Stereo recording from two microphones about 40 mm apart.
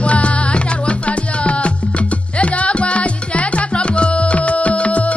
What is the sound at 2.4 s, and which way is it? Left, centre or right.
Music, left.